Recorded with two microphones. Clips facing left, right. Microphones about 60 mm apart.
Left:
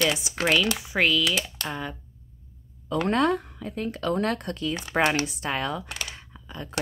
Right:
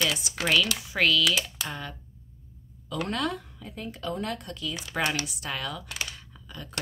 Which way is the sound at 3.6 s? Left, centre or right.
Left.